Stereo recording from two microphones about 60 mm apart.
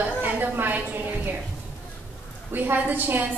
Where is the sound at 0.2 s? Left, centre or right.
Right.